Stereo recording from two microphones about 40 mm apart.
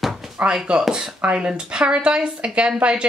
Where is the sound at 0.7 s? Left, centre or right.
Right.